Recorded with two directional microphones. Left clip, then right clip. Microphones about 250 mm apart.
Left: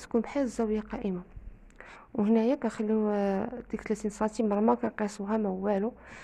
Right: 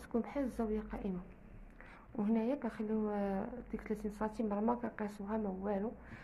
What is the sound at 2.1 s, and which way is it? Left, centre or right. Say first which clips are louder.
A woman's voice: left 10 dB; left.